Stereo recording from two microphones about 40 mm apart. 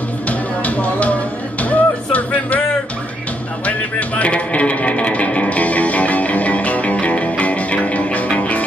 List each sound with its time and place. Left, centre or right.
0.3 s music: left
3.6 s music: left